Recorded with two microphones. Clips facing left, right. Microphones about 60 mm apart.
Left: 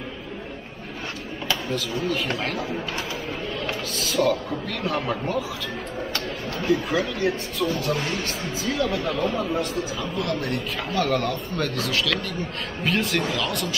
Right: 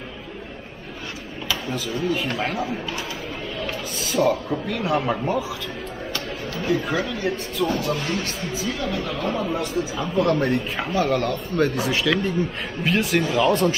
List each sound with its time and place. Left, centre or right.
1.7 s speech: centre
4.0 s speech: centre
6.6 s speech: centre
10.1 s speech: right
10.9 s speech: centre
11.6 s speech: centre
12.8 s speech: centre
13.5 s speech: right